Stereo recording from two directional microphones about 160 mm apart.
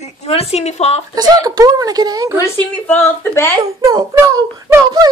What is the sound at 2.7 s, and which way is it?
Speech, 10° left (ahead or behind).